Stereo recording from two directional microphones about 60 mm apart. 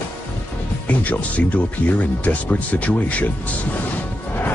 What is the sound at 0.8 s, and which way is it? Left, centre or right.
Speech, left.